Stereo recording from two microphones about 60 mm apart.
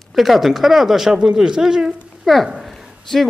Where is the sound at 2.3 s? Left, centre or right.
Centre.